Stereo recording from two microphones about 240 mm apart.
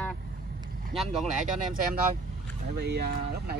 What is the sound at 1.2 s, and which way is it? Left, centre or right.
Speech, right.